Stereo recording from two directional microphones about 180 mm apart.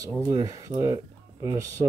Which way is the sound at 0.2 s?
20° right (ahead or behind).